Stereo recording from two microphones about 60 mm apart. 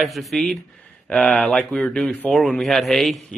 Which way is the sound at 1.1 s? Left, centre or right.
Centre.